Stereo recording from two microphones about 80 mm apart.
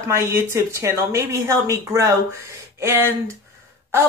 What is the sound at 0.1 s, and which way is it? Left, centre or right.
A woman's voice, right.